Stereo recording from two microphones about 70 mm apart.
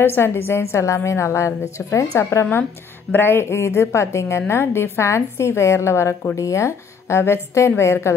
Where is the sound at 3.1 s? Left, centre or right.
Left.